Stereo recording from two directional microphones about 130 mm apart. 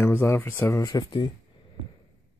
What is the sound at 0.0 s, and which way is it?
Speech, 20° left (ahead or behind).